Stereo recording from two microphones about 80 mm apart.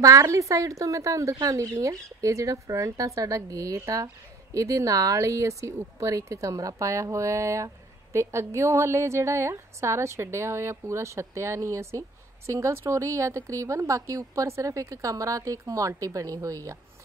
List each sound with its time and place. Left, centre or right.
0.0 s a woman's voice: right